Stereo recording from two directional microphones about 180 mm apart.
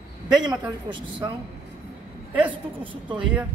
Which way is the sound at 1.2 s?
20° right (ahead or behind).